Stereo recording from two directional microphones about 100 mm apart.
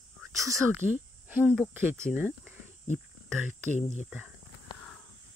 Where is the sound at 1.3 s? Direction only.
15° right (ahead or behind).